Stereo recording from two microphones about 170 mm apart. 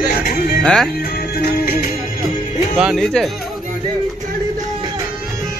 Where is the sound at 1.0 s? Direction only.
65° left (ahead or behind).